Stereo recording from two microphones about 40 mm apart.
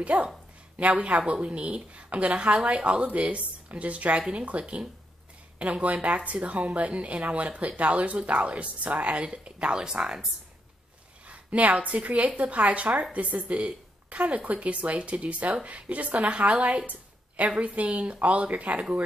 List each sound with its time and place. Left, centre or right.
0.0 s a woman's voice: right
11.2 s a woman's voice: right